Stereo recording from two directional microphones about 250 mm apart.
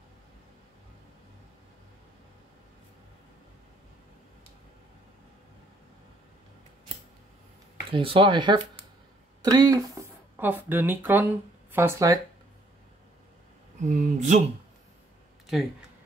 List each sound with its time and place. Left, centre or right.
7.9 s speech: right
13.8 s speech: right
15.4 s a sound: centre